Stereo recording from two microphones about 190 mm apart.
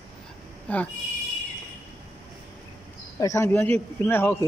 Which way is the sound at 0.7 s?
10° left (ahead or behind).